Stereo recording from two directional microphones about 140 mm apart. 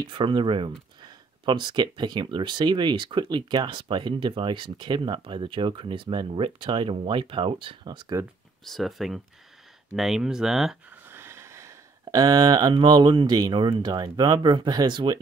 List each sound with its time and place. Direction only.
0.0 s speech: 35° right (ahead or behind)
8.6 s speech: centre (ahead or behind)
11.1 s a sound: 15° right (ahead or behind)
12.0 s speech: 25° right (ahead or behind)